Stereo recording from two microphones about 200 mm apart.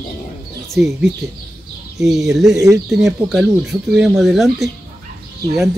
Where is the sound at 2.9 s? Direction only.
Centre (ahead or behind).